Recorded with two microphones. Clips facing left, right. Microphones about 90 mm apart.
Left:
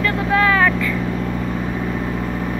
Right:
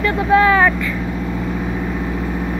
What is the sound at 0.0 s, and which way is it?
Vehicle, 20° right (ahead or behind).